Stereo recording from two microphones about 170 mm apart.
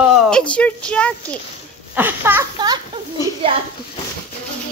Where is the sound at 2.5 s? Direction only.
25° right (ahead or behind).